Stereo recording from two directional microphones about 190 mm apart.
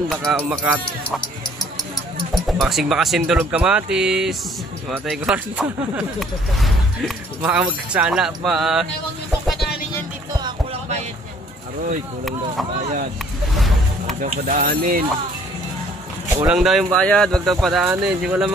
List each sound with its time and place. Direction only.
0.1 s speech: centre (ahead or behind)
2.3 s speech: centre (ahead or behind)
14.2 s speech: 45° right (ahead or behind)
16.3 s speech: 5° right (ahead or behind)